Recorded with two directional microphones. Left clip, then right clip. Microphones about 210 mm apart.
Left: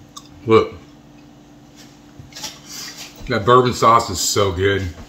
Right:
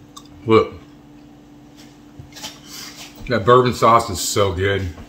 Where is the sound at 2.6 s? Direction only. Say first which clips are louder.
Left 2 dB; centre (ahead or behind).